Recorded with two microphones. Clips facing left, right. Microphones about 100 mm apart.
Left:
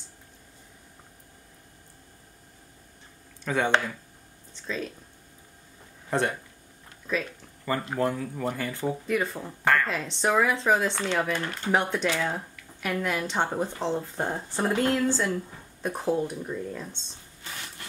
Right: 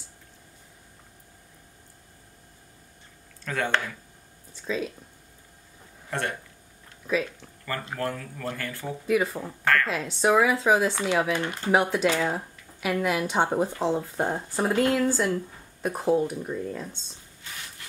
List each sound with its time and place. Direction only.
3.4 s speech: 15° left (ahead or behind)
4.6 s speech: 5° right (ahead or behind)
6.0 s speech: 20° left (ahead or behind)
7.0 s speech: centre (ahead or behind)
7.6 s speech: 20° left (ahead or behind)
9.0 s speech: 5° right (ahead or behind)